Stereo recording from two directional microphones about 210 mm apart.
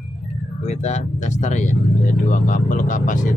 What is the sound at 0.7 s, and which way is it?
Speech, 30° left (ahead or behind).